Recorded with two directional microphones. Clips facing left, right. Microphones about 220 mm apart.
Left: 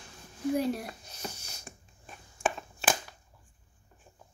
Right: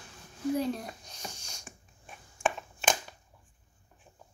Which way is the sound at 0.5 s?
10° left (ahead or behind).